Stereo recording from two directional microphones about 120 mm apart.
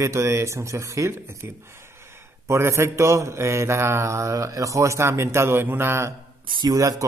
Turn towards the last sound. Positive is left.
turn(degrees=-25)  # may be behind; listen again after turning